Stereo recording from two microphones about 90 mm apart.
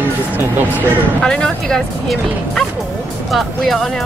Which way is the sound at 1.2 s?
10° left (ahead or behind).